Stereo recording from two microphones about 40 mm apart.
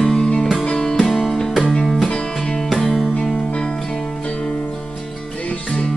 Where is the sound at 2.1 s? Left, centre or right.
Left.